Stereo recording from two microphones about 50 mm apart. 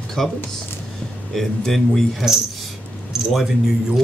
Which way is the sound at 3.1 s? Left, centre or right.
Centre.